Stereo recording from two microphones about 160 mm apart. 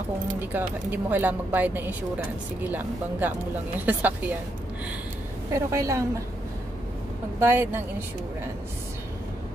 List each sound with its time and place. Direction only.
0.4 s speech: 10° right (ahead or behind)
5.5 s a woman's voice: 20° right (ahead or behind)
7.3 s speech: 15° right (ahead or behind)